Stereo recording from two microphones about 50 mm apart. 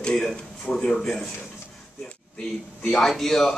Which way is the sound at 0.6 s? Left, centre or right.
Left.